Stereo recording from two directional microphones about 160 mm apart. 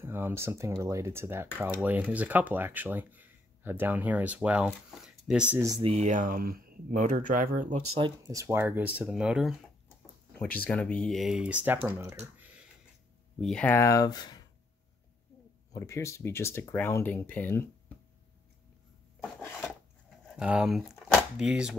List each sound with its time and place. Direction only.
0.0 s speech: 15° right (ahead or behind)
5.5 s speech: 15° right (ahead or behind)
5.8 s speech: 35° right (ahead or behind)
6.0 s speech: 55° right (ahead or behind)
8.0 s speech: 20° right (ahead or behind)
13.4 s speech: 5° left (ahead or behind); by 14.4 s 25° left (ahead or behind)
15.7 s speech: 20° left (ahead or behind)
19.4 s dishes: 15° left (ahead or behind)
20.3 s speech: 5° right (ahead or behind)